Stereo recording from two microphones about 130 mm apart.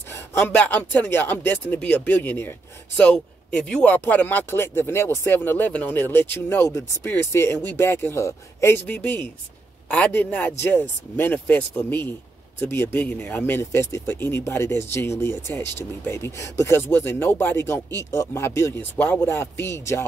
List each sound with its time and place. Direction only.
0.4 s speech: 10° left (ahead or behind)